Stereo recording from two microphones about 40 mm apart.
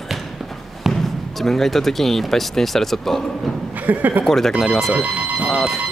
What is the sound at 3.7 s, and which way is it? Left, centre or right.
Speech, right.